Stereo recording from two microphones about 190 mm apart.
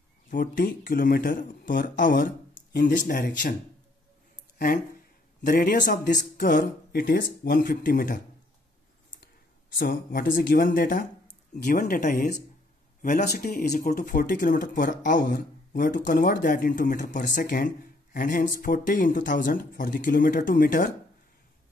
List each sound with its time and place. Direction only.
0.3 s speech: 45° left (ahead or behind)
5.4 s speech: 45° left (ahead or behind)
9.8 s speech: 55° left (ahead or behind)
17.2 s speech: 55° left (ahead or behind)